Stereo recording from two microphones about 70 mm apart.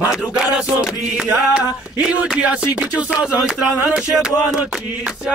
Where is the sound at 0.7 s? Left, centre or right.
Centre.